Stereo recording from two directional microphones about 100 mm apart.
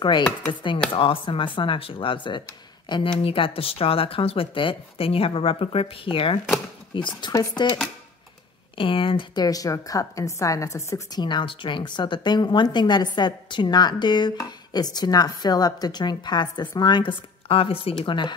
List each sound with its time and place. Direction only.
0.0 s a woman's voice: 55° left (ahead or behind)
3.2 s a woman's voice: 65° left (ahead or behind); by 7.3 s 50° left (ahead or behind)
8.7 s speech: 60° left (ahead or behind)
9.3 s speech: 40° left (ahead or behind)
11.1 s a woman's voice: 50° left (ahead or behind)